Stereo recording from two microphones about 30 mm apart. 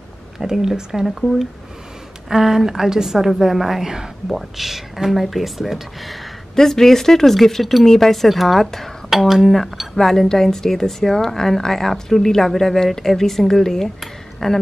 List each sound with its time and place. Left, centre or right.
0.4 s speech: centre
1.0 s speech: centre
2.2 s a woman's voice: centre
3.8 s a woman's voice: centre
4.3 s speech: centre
6.5 s speech: centre
10.2 s a woman's voice: centre